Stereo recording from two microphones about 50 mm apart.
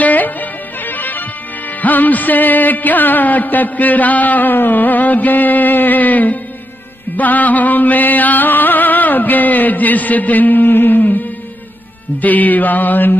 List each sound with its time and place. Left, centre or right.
0.0 s music: left
12.2 s music: left